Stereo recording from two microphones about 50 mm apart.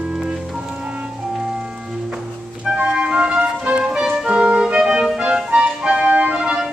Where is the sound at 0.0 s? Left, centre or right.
Centre.